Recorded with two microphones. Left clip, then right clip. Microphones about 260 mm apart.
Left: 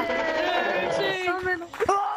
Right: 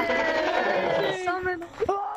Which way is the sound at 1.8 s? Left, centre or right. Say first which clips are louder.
Left 3 dB; left.